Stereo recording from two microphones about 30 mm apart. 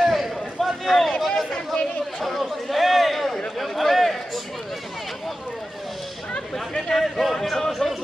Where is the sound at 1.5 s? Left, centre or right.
Left.